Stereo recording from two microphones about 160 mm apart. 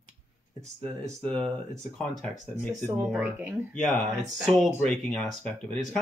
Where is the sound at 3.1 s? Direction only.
10° right (ahead or behind).